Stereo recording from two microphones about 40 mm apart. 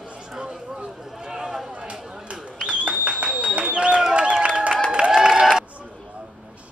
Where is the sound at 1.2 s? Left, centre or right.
Centre.